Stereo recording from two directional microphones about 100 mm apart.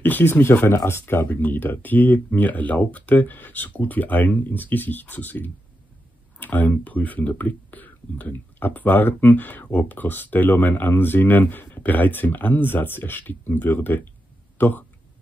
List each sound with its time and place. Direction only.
0.0 s speech: 20° left (ahead or behind)